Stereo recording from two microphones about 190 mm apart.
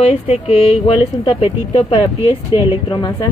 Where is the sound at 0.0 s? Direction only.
30° left (ahead or behind).